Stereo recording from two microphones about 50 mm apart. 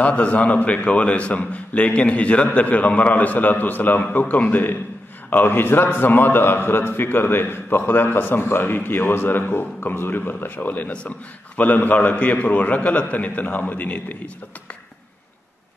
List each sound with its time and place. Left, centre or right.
0.0 s a man's voice: left